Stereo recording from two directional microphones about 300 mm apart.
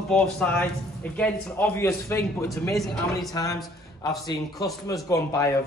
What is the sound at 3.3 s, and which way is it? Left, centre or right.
Speech, centre.